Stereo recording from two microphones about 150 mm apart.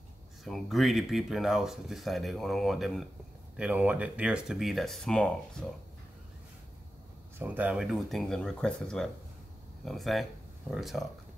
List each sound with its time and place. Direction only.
0.4 s speech: centre (ahead or behind)
7.3 s speech: 10° right (ahead or behind)